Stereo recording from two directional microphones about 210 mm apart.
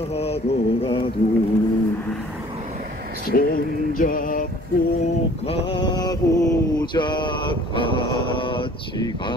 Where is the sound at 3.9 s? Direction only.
40° left (ahead or behind).